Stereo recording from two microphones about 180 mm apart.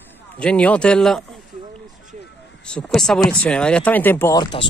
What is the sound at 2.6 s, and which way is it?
Speech, 5° left (ahead or behind).